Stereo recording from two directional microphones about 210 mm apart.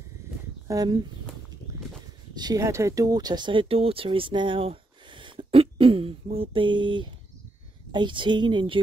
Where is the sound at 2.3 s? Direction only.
20° right (ahead or behind).